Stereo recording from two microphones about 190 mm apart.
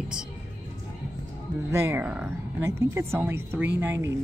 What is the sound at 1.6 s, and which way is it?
Speech, 15° right (ahead or behind).